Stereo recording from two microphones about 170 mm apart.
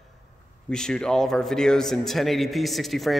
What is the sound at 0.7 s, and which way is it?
A man's voice, 5° left (ahead or behind).